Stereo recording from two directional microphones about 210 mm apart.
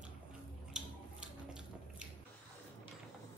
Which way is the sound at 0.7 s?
5° right (ahead or behind).